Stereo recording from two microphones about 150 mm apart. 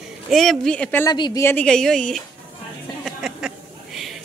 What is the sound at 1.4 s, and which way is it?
Speech, 10° left (ahead or behind).